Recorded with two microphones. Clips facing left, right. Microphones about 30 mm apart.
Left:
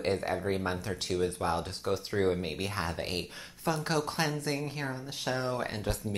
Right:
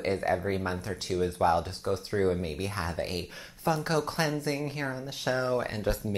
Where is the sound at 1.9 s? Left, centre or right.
Left.